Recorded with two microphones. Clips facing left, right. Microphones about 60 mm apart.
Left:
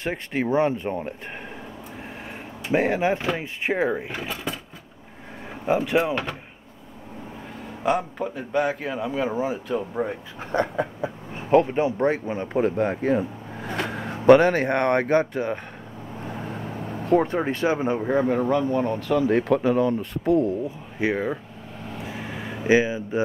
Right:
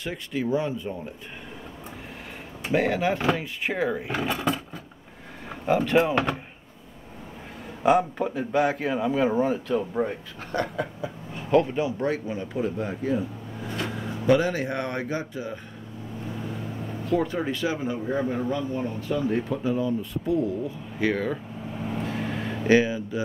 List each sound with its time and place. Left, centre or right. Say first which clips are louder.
0.0 s speech: left 3 dB; left
2.7 s speech: left 2 dB; left
4.2 s a man's voice: right 5 dB; centre
5.7 s speech: even; centre
7.8 s a man's voice: right 3 dB; centre
10.5 s speech: left 4 dB; left
21.0 s speech: left 1 dB; centre
21.7 s vehicle: right 5 dB; centre
22.0 s a sound: right 1 dB; centre